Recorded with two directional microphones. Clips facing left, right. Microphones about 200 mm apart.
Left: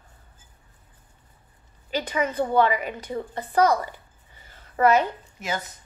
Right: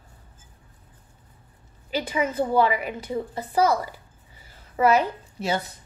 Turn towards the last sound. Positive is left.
turn(degrees=-30)  # may be behind; listen again after turning